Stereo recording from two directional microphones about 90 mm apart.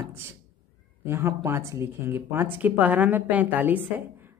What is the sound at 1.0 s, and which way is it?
A woman's voice, 30° right (ahead or behind).